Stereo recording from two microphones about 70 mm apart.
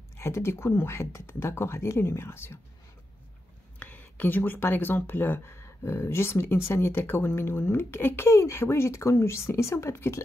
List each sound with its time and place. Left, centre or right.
0.2 s speech: left
3.8 s speech: left